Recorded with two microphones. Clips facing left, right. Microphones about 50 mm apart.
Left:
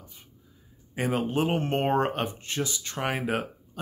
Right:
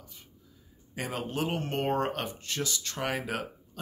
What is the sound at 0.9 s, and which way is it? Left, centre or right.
Speech, centre.